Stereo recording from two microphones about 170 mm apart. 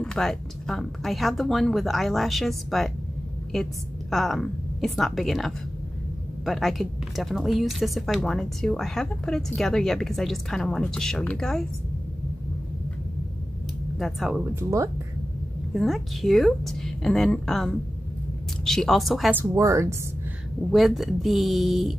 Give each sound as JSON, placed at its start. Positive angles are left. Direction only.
{"t": 0.0, "sound": "a woman's voice", "side_deg": 5}
{"t": 13.9, "sound": "a woman's voice", "side_deg": 0}
{"t": 14.5, "sound": "speech", "side_deg": -15}
{"t": 15.7, "sound": "a woman's voice", "side_deg": 0}
{"t": 19.3, "sound": "speech", "side_deg": -15}
{"t": 20.7, "sound": "a woman's voice", "side_deg": 0}